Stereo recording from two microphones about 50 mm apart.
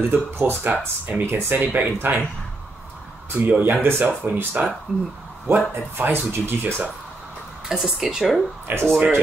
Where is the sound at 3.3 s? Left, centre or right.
Right.